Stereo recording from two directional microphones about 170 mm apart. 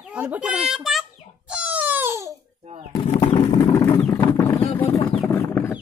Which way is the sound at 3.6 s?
20° left (ahead or behind).